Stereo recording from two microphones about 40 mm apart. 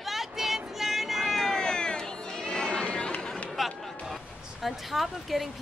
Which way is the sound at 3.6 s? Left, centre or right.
Centre.